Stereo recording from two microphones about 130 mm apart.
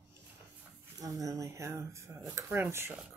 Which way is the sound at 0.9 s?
25° right (ahead or behind).